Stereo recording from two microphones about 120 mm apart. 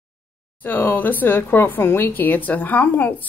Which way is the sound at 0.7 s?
15° left (ahead or behind).